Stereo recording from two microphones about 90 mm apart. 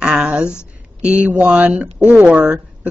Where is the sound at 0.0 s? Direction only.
15° right (ahead or behind).